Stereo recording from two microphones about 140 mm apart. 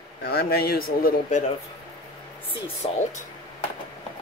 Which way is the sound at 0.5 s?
90° left.